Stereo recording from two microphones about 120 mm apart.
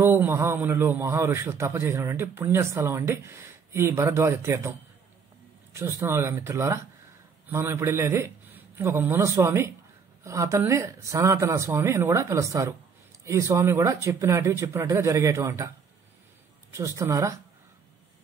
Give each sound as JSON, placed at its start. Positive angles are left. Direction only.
{"t": 0.0, "sound": "a man's voice", "side_deg": -20}
{"t": 16.7, "sound": "a man's voice", "side_deg": -25}